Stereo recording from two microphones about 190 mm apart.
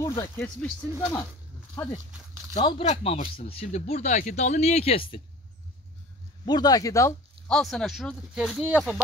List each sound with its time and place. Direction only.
0.0 s speech: 20° left (ahead or behind)
0.6 s speech: 5° left (ahead or behind)
2.6 s speech: 30° left (ahead or behind)
6.4 s speech: 20° left (ahead or behind)
7.4 s speech: 5° left (ahead or behind)